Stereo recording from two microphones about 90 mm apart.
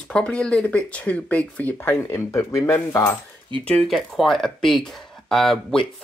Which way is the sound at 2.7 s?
25° left (ahead or behind).